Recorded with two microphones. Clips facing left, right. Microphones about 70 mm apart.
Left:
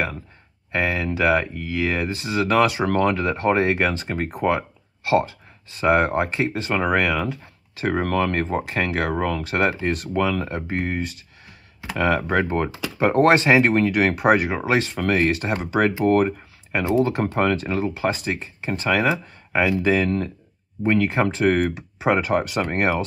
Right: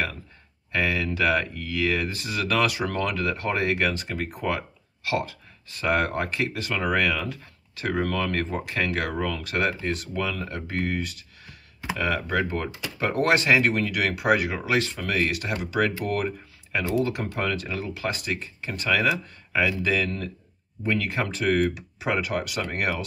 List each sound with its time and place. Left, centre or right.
0.7 s speech: left
7.9 s speech: left
9.8 s speech: left
12.0 s speech: left